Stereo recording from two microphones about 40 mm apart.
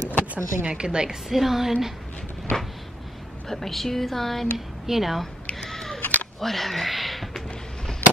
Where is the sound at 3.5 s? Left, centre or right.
Centre.